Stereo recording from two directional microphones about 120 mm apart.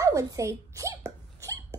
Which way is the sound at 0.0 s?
25° right (ahead or behind).